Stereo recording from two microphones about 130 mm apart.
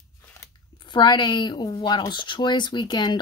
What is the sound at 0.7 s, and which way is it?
A woman's voice, 35° left (ahead or behind).